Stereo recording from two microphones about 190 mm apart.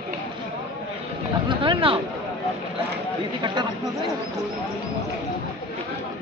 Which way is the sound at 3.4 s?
25° right (ahead or behind).